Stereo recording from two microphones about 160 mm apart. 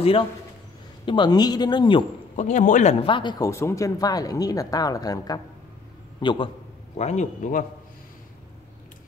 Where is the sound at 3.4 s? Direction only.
15° left (ahead or behind).